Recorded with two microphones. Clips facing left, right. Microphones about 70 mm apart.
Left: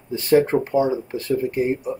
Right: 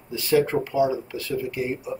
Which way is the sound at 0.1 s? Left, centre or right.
Left.